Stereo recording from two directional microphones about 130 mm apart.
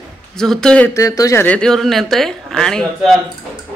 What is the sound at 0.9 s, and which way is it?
Speech, 25° left (ahead or behind).